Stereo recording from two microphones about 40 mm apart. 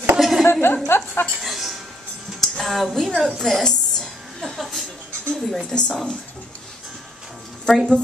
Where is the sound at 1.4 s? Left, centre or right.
Centre.